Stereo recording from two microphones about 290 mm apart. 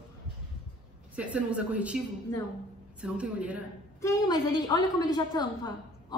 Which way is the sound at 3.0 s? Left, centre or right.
Centre.